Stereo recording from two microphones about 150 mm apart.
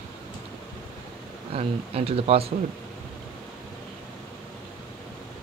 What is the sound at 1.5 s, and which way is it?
Speech, 40° right (ahead or behind).